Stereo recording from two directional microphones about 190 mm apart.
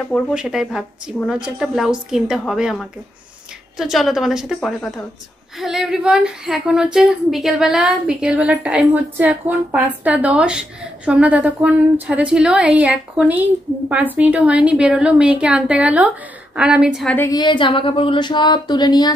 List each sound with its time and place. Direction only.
0.1 s a woman's voice: 5° right (ahead or behind)
17.1 s a woman's voice: 15° left (ahead or behind)